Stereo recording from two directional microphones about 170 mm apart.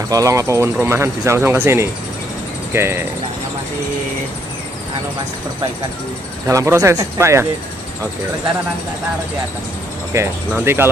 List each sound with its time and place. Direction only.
0.1 s speech: 20° right (ahead or behind)
6.4 s speech: 15° right (ahead or behind)
10.1 s speech: 15° right (ahead or behind)